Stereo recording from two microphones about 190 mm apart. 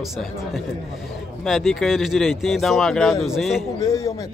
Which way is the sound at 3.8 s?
15° left (ahead or behind).